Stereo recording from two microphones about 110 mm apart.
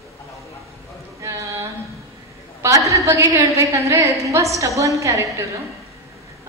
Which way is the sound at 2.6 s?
25° right (ahead or behind).